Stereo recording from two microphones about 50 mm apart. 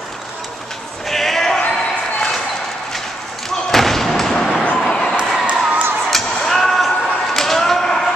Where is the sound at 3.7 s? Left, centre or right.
Centre.